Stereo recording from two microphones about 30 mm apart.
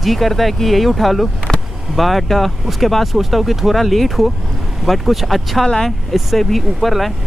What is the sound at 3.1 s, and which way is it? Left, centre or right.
Speech, centre.